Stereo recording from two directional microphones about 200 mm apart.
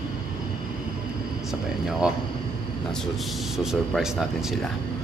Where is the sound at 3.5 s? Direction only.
Centre (ahead or behind).